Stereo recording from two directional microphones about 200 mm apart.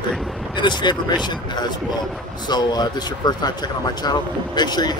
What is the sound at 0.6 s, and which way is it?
Speech, 20° left (ahead or behind).